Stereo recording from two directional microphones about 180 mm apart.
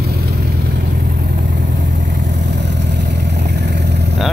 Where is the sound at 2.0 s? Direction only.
75° right (ahead or behind).